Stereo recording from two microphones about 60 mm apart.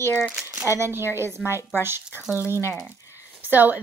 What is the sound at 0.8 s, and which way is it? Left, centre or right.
Speech, right.